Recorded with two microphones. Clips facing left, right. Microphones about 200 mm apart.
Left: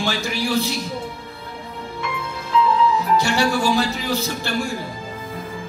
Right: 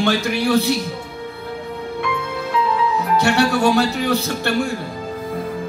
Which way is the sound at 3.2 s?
60° right (ahead or behind).